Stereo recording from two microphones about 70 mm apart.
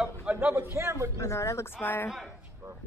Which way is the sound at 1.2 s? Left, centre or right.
Left.